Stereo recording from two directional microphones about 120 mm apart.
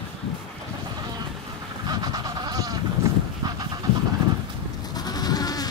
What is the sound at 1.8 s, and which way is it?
Goat, 30° right (ahead or behind).